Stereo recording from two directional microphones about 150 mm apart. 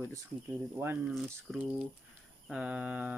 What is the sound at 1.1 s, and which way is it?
Speech, 5° right (ahead or behind).